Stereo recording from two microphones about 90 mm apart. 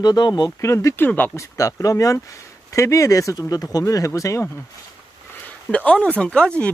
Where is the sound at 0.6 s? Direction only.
30° left (ahead or behind).